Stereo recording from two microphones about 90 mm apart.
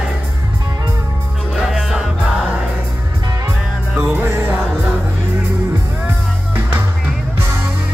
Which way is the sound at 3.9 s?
25° right (ahead or behind).